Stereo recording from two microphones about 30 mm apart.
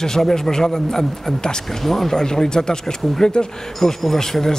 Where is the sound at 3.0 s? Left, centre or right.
Centre.